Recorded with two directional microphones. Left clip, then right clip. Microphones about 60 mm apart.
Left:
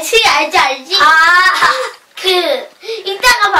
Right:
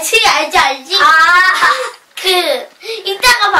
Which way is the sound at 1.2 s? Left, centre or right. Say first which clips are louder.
Even; centre.